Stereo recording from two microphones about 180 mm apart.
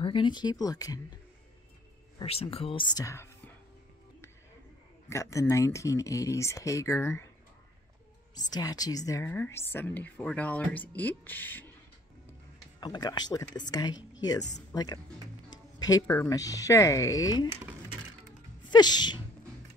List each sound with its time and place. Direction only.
0.0 s speech: 25° left (ahead or behind)
2.1 s speech: 30° left (ahead or behind); by 3.5 s 15° left (ahead or behind)
5.1 s a woman's voice: 15° left (ahead or behind)
8.4 s a woman's voice: 20° left (ahead or behind)
12.8 s speech: 25° left (ahead or behind)
18.6 s speech: 25° left (ahead or behind)